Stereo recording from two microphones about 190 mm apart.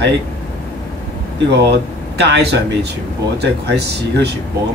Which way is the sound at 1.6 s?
60° right (ahead or behind).